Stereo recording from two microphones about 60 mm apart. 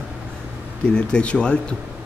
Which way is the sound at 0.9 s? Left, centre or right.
Centre.